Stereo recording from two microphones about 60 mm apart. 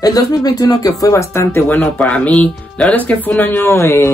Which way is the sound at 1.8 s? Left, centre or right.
Left.